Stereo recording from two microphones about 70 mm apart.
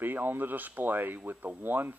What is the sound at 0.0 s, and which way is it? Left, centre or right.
Speech, right.